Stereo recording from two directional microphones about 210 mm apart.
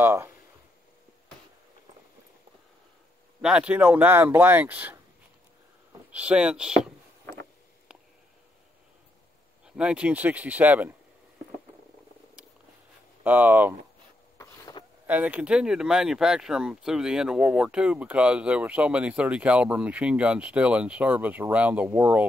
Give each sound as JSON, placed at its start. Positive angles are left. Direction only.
{"t": 0.0, "sound": "speech", "side_deg": -10}
{"t": 3.4, "sound": "speech", "side_deg": -5}
{"t": 6.1, "sound": "speech", "side_deg": -5}
{"t": 9.7, "sound": "speech", "side_deg": -5}
{"t": 13.2, "sound": "speech", "side_deg": -10}
{"t": 14.4, "sound": "a sound", "side_deg": 20}
{"t": 15.0, "sound": "speech", "side_deg": -5}